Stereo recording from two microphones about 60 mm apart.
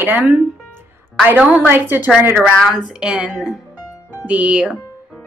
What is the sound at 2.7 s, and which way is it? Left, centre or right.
Speech, centre.